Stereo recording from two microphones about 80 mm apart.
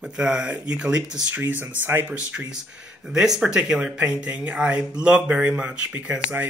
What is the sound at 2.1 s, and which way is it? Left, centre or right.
Speech, centre.